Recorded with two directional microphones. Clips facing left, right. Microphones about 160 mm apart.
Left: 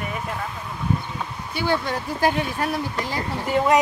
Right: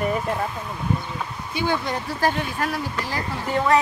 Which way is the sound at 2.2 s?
15° left (ahead or behind).